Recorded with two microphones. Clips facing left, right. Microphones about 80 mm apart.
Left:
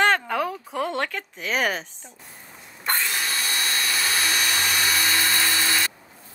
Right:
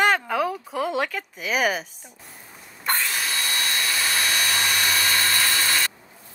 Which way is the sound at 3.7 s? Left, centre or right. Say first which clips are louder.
Left 1 dB; centre.